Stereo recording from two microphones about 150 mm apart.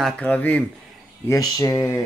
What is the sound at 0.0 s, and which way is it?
Speech, 10° left (ahead or behind).